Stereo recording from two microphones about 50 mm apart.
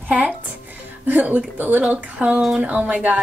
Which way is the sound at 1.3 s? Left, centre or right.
Right.